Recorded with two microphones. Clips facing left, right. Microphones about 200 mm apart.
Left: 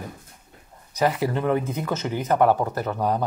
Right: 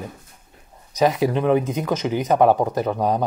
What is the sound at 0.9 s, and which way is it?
Speech, 15° right (ahead or behind).